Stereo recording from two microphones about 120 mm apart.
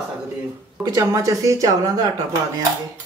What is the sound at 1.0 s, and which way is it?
Speech, 30° right (ahead or behind).